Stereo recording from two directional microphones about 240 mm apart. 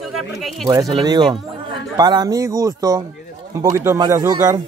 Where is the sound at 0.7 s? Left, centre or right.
Centre.